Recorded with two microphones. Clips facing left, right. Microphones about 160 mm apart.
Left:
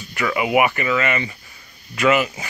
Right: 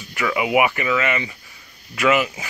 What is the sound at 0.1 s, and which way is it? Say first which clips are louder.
Speech: left 1 dB; 5° right (ahead or behind).